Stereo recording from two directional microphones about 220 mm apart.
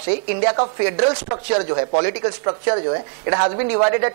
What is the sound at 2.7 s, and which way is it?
Speech, 25° right (ahead or behind).